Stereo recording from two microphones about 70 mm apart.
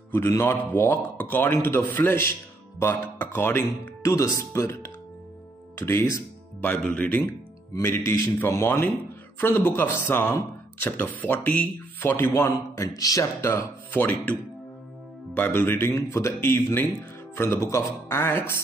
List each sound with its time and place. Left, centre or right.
0.3 s speech: left
0.7 s speech: left
4.0 s speech: left
6.6 s speech: centre
7.8 s speech: left
12.9 s speech: left
13.4 s speech: left
16.4 s speech: left